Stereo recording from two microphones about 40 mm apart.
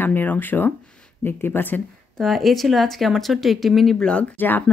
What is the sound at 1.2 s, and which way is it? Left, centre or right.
Speech, left.